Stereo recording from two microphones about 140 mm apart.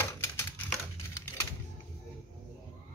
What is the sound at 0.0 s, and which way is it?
Typewriter, 15° left (ahead or behind).